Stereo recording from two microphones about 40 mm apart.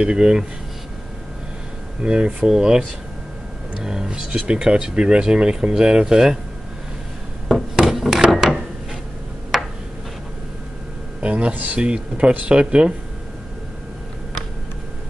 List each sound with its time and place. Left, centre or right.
0.0 s speech: right
2.0 s speech: right
3.8 s speech: centre
7.8 s hammer: centre
8.3 s wood: centre
9.5 s tick-tock: centre
11.1 s a sound: right
11.7 s speech: right